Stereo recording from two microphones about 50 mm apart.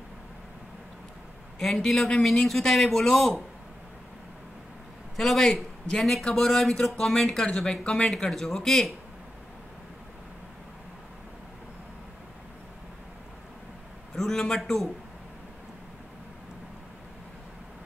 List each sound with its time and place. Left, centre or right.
1.6 s speech: centre
2.0 s speech: centre
2.4 s speech: centre
5.1 s speech: centre
7.8 s speech: left
8.1 s speech: centre
14.1 s a sound: centre
14.6 s speech: centre